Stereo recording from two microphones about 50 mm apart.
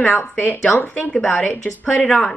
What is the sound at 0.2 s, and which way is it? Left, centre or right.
Speech, left.